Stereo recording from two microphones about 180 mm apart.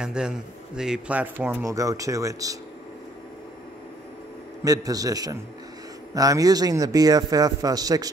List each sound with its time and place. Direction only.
0.0 s a man's voice: 5° right (ahead or behind)
4.6 s speech: 20° right (ahead or behind)